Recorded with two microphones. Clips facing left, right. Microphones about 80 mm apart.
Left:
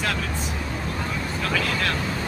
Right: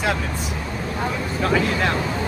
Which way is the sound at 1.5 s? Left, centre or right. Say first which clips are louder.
Right 5 dB; right.